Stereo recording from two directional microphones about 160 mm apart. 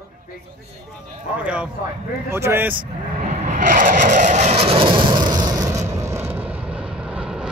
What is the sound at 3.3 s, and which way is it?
Vehicle, 50° right (ahead or behind).